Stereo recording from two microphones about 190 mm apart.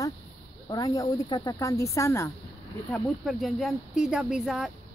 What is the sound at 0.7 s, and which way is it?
Speech, 20° left (ahead or behind).